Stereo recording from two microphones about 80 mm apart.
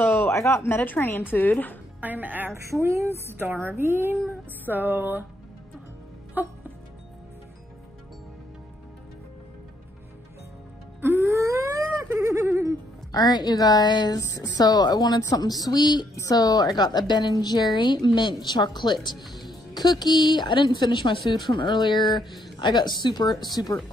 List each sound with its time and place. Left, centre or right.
0.0 s speech: left
2.0 s music: right
2.5 s a woman's voice: right
6.4 s a woman's voice: right
11.0 s wail: right
12.2 s a sound: right
13.1 s speech: left
14.2 s speech: left
16.2 s speech: left
17.7 s speech: left
21.3 s speech: left